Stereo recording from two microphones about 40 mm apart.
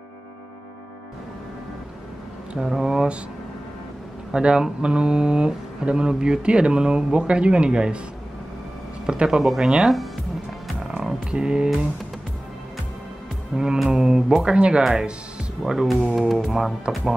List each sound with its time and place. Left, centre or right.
2.5 s speech: centre
4.3 s speech: right
9.0 s a man's voice: right
9.4 s speech: centre
11.2 s speech: right
13.5 s speech: centre
14.8 s speech: centre